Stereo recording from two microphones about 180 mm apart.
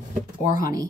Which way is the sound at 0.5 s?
20° right (ahead or behind).